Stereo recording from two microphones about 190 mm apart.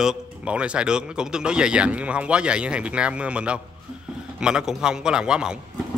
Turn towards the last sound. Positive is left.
turn(degrees=-5)  # may be behind; listen again after turning